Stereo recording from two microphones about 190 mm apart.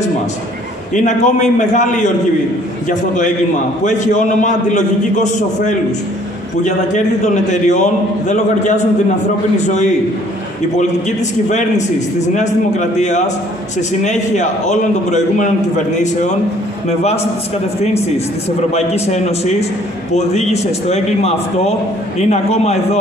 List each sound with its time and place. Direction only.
0.9 s a man's voice: 40° left (ahead or behind)
7.4 s a man's voice: 40° left (ahead or behind)
10.8 s a man's voice: 40° left (ahead or behind)
18.7 s a man's voice: 35° left (ahead or behind)